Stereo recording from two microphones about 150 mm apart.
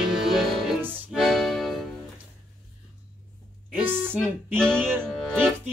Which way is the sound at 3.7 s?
15° right (ahead or behind).